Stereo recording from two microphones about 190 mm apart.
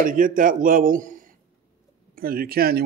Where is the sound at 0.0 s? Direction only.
45° right (ahead or behind).